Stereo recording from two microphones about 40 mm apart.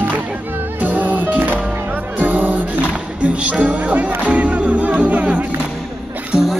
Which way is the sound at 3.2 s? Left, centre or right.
Right.